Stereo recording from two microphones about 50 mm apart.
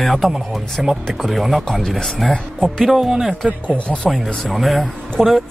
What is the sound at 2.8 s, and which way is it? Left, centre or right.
Speech, centre.